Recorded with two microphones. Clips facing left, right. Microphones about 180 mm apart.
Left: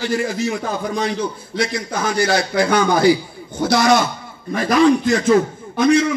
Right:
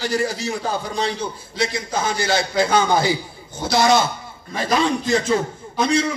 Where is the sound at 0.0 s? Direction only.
40° right (ahead or behind).